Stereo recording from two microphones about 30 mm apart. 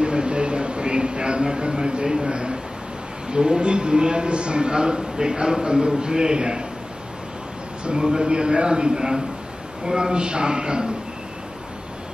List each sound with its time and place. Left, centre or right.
0.0 s a sound: right
3.3 s a man's voice: right
7.8 s a man's voice: right